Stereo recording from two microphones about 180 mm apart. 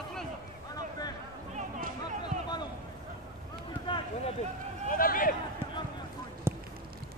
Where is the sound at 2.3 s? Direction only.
50° right (ahead or behind).